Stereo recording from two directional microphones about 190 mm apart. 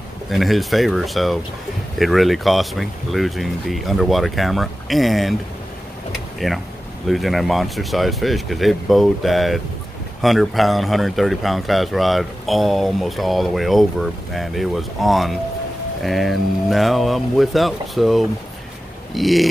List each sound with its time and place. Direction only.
0.3 s speech: centre (ahead or behind)
6.4 s speech: centre (ahead or behind)